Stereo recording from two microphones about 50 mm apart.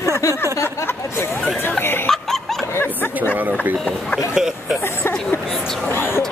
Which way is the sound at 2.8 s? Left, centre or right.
Left.